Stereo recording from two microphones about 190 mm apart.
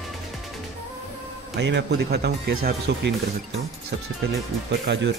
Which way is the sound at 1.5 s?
65° right (ahead or behind).